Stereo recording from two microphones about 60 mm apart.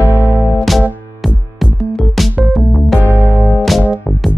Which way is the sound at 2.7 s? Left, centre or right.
Centre.